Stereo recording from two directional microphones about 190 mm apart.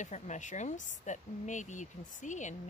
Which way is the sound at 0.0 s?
40° left (ahead or behind).